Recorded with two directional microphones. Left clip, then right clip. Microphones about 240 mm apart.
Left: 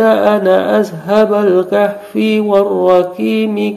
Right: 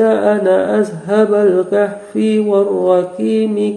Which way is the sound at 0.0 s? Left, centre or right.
Left.